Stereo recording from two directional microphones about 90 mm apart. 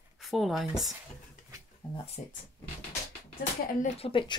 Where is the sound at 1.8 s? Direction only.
60° left (ahead or behind).